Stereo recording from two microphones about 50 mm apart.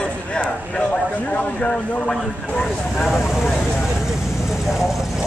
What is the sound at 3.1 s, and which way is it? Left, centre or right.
Speech, centre.